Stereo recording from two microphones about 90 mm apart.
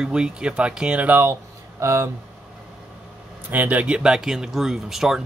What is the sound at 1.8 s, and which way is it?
Speech, 35° right (ahead or behind).